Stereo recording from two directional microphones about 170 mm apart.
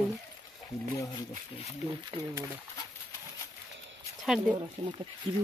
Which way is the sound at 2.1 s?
30° right (ahead or behind).